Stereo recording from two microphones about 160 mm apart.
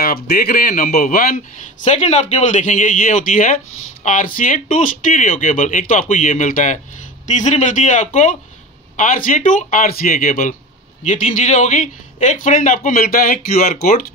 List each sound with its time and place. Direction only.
0.0 s speech: 70° left (ahead or behind)
11.1 s speech: 45° left (ahead or behind); by 13.4 s 65° left (ahead or behind)
13.6 s speech: 50° left (ahead or behind)